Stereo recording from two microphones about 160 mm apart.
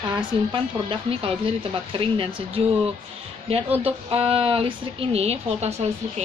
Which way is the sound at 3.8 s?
35° right (ahead or behind).